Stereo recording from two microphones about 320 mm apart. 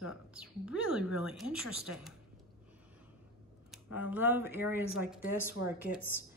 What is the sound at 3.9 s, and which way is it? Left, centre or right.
Speech, centre.